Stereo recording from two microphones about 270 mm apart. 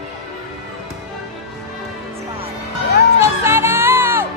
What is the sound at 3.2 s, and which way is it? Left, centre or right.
Music, centre.